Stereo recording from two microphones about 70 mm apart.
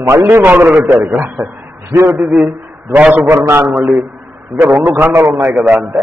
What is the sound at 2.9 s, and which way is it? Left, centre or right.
Speech, centre.